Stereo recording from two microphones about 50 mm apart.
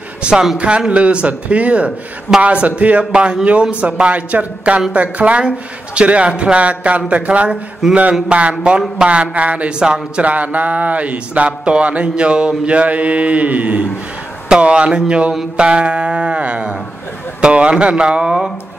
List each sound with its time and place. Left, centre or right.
0.2 s a man's voice: centre
9.8 s speech: centre
10.2 s speech: right